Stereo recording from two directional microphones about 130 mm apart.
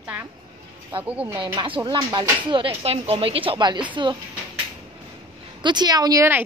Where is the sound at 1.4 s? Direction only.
40° right (ahead or behind).